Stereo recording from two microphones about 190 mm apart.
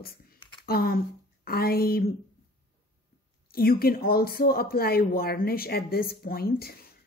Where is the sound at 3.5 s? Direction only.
50° left (ahead or behind).